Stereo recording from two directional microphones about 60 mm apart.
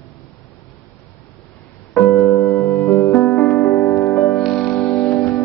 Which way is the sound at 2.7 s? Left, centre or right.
Left.